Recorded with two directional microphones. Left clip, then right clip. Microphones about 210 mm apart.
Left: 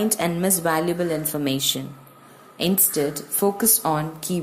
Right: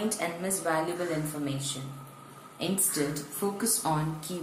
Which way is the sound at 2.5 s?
40° left (ahead or behind).